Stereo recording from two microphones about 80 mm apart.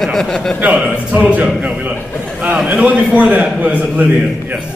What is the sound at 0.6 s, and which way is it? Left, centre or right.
A man's voice, centre.